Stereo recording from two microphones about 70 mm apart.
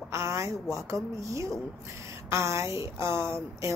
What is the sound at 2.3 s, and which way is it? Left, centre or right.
Speech, right.